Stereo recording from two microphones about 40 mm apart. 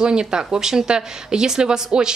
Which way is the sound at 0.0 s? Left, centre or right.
Right.